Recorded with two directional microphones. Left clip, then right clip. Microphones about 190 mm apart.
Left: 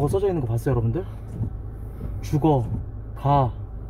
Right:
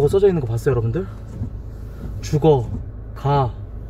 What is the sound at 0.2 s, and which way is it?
Speech, 15° right (ahead or behind).